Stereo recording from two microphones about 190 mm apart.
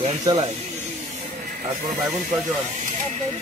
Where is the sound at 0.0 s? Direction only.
25° right (ahead or behind).